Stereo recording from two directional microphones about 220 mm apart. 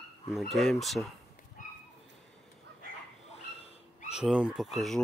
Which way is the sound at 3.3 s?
30° left (ahead or behind).